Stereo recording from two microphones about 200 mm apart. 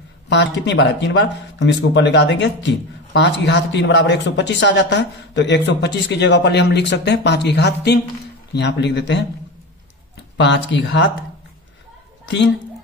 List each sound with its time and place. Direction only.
0.3 s speech: 60° left (ahead or behind)
10.3 s speech: 60° left (ahead or behind)
12.3 s speech: 60° left (ahead or behind)